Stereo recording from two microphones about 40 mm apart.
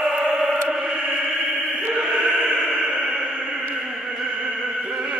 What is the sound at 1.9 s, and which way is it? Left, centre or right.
Music, right.